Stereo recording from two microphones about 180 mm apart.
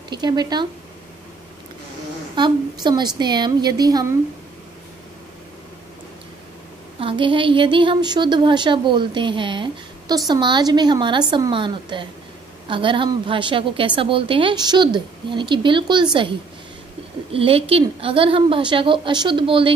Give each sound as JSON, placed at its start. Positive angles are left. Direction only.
{"t": 0.1, "sound": "speech", "side_deg": -25}
{"t": 2.3, "sound": "speech", "side_deg": -25}
{"t": 7.0, "sound": "speech", "side_deg": -30}